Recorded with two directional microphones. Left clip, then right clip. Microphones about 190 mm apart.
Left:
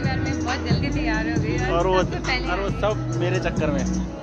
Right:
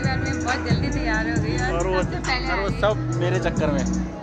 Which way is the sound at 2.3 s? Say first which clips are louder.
Right 1 dB; 10° left (ahead or behind).